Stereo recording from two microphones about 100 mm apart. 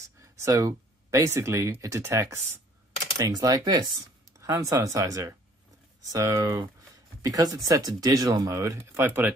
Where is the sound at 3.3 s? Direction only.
40° right (ahead or behind).